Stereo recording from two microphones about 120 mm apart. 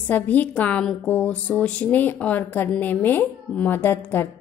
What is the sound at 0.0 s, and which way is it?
A woman's voice, 15° left (ahead or behind).